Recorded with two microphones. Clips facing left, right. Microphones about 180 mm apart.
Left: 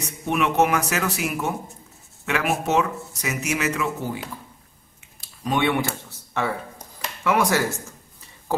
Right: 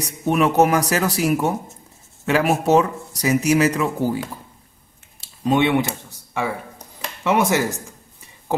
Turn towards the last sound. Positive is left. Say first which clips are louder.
# right 2 dB
turn(degrees=-20)  # may be behind; listen again after turning